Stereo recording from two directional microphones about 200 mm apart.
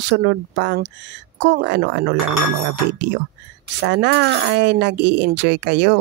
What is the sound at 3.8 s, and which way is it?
Speech, 60° right (ahead or behind).